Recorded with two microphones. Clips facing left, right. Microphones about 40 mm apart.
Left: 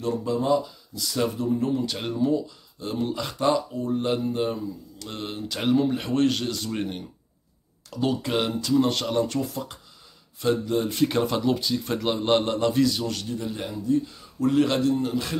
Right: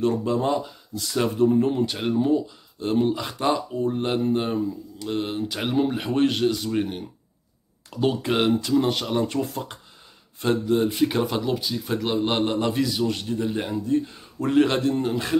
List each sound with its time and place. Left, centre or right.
0.0 s a man's voice: right
2.1 s speech: right
3.2 s speech: centre
3.7 s speech: right
4.9 s speech: centre
7.9 s speech: right
8.7 s speech: centre
9.1 s speech: right
9.4 s a man's voice: right
10.7 s speech: centre
12.5 s speech: centre
13.1 s a man's voice: right